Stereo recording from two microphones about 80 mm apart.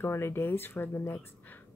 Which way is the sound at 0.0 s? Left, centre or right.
Left.